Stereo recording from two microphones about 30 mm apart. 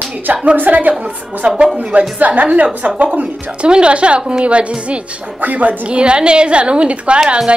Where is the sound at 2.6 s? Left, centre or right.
Right.